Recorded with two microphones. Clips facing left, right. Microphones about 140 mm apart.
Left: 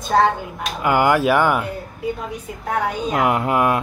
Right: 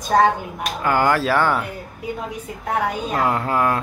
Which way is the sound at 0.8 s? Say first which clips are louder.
Left 2 dB; 15° left (ahead or behind).